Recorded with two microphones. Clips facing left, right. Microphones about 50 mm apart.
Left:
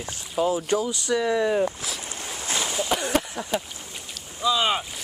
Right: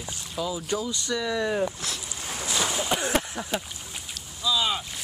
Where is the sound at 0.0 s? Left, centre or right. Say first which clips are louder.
Left 6 dB; left.